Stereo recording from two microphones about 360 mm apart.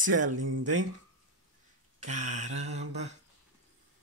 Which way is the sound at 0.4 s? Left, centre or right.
Right.